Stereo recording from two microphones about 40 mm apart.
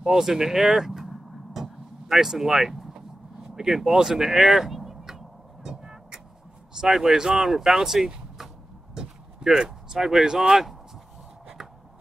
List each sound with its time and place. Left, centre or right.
0.0 s vehicle: centre
3.4 s speech: centre
4.6 s vehicle: centre
5.7 s vehicle: right
6.8 s speech: centre
8.9 s vehicle: centre
10.2 s speech: centre